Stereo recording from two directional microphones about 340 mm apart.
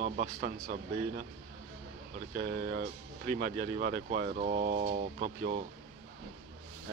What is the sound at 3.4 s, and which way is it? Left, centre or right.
Speech, right.